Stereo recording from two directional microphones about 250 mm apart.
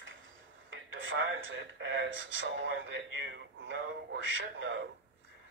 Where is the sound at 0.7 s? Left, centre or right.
Right.